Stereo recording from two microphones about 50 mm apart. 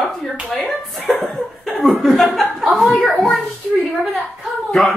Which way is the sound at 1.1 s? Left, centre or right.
Left.